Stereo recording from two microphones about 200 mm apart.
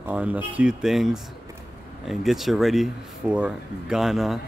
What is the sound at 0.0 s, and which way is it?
Speech, 10° right (ahead or behind).